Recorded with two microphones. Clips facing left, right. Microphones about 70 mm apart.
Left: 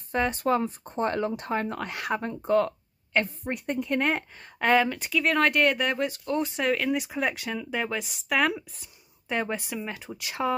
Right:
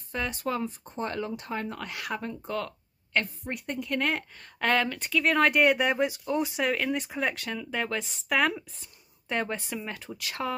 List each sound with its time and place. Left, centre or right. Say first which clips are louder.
0.1 s speech: left 6 dB; left
3.1 s speech: left 3 dB; centre
4.6 s speech: left 4 dB; centre